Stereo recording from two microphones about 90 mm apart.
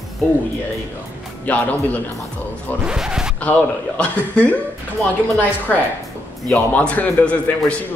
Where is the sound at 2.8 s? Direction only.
5° right (ahead or behind).